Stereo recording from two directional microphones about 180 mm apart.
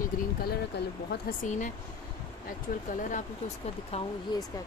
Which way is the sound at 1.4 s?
45° left (ahead or behind).